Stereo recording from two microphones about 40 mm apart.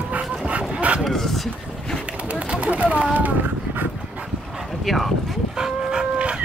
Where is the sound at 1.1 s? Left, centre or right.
Centre.